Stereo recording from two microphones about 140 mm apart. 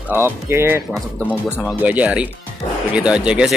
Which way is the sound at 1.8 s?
10° right (ahead or behind).